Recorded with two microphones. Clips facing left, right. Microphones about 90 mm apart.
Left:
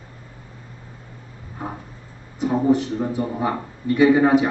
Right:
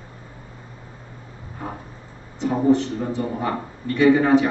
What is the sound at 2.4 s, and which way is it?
A man's voice, 10° left (ahead or behind).